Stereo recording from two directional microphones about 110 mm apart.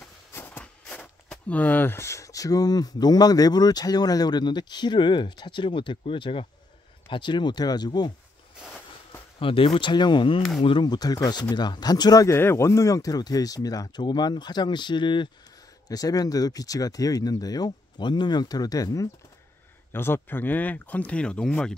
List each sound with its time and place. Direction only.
0.3 s speech: 20° left (ahead or behind); by 8.1 s 40° left (ahead or behind)
9.4 s speech: 55° left (ahead or behind); by 12.4 s 35° left (ahead or behind)
12.4 s speech: 25° left (ahead or behind)
19.9 s speech: 20° left (ahead or behind)